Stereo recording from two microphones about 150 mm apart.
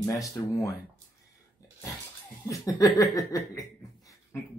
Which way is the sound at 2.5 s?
20° left (ahead or behind).